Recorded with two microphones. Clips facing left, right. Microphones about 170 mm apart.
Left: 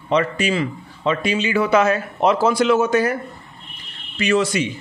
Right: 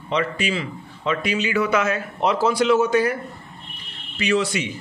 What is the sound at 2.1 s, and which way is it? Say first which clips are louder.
A man's voice: left 2 dB; 50° left (ahead or behind).